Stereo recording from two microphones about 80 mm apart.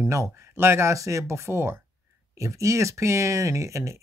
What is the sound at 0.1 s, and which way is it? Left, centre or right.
Speech, right.